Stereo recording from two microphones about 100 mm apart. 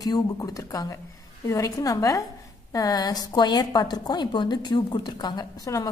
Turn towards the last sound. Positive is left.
turn(degrees=35)  # may be behind; listen again after turning